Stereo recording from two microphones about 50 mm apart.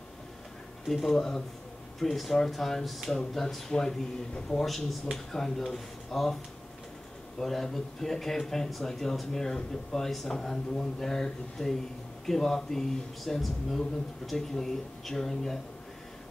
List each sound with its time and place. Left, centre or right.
0.8 s speech: centre
7.3 s speech: centre